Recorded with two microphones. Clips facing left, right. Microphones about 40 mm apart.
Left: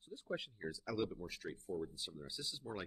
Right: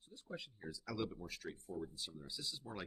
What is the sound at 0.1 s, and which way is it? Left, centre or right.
Speech, centre.